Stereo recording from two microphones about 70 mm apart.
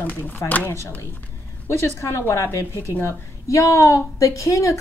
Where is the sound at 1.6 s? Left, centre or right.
Left.